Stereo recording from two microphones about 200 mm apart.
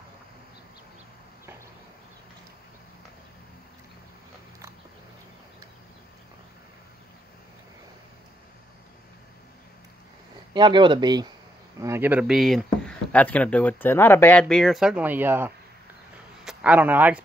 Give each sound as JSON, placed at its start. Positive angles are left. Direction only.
{"t": 10.5, "sound": "speech", "side_deg": -20}